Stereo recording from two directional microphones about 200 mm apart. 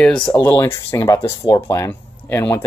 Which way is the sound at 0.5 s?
10° left (ahead or behind).